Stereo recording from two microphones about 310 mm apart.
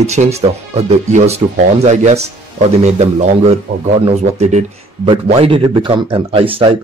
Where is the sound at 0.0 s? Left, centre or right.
Right.